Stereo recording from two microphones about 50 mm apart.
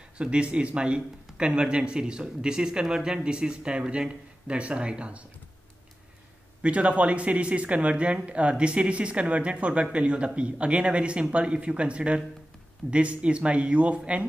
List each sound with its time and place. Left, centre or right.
0.2 s speech: right
6.6 s speech: right